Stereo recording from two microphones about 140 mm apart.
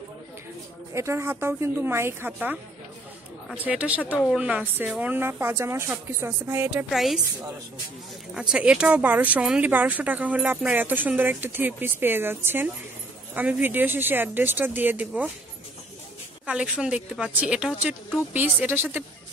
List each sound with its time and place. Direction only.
0.9 s speech: 20° right (ahead or behind)
2.3 s speech: 5° right (ahead or behind)
6.9 s a woman's voice: centre (ahead or behind)
8.4 s speech: 5° right (ahead or behind)
16.4 s speech: 10° right (ahead or behind)